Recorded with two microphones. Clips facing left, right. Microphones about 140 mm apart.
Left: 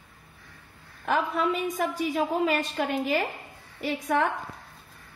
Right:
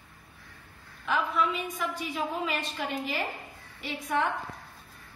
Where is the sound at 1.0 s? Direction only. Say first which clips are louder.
Left 3 dB; 45° left (ahead or behind).